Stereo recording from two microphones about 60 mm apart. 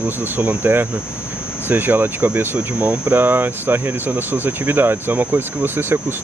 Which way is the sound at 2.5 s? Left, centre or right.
Right.